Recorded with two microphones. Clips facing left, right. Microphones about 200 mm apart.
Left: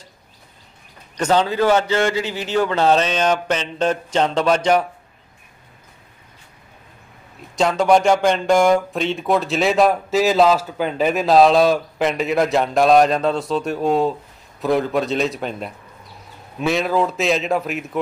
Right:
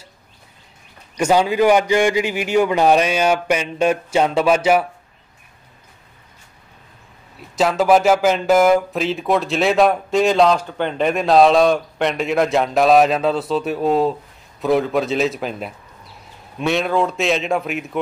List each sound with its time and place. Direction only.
1.1 s a man's voice: 10° right (ahead or behind)
7.5 s speech: 5° right (ahead or behind)